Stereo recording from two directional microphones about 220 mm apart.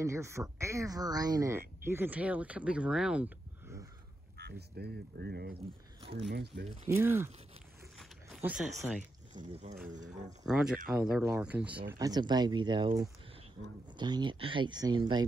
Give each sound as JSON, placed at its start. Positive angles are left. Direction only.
{"t": 0.0, "sound": "speech", "side_deg": -15}
{"t": 4.4, "sound": "speech", "side_deg": -45}
{"t": 6.9, "sound": "speech", "side_deg": -10}
{"t": 8.0, "sound": "a sound", "side_deg": -5}
{"t": 8.7, "sound": "speech", "side_deg": -5}
{"t": 9.3, "sound": "speech", "side_deg": -35}
{"t": 10.4, "sound": "speech", "side_deg": 0}
{"t": 12.0, "sound": "speech", "side_deg": -20}